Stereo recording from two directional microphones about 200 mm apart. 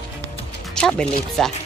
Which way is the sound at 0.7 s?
5° left (ahead or behind).